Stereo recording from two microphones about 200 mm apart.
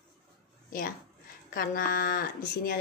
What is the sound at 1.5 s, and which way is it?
Speech, 45° left (ahead or behind).